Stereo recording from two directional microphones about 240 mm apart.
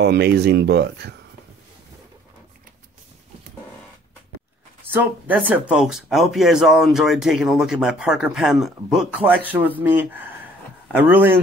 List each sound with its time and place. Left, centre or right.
0.0 s speech: right
4.9 s speech: centre